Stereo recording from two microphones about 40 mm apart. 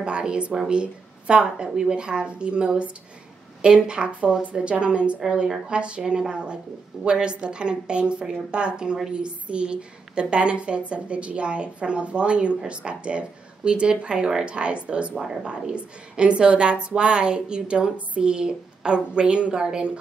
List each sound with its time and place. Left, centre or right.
0.0 s a woman's voice: right